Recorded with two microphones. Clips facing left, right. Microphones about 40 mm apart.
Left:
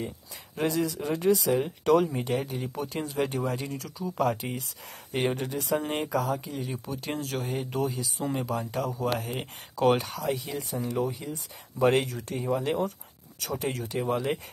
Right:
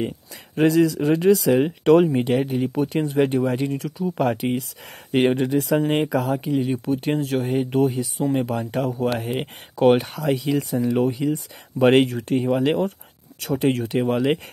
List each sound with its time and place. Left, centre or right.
0.6 s speech: right
3.0 s speech: right
10.1 s speech: right